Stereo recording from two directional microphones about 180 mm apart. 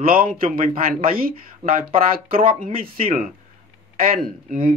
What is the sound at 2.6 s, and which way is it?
Speech, 55° right (ahead or behind).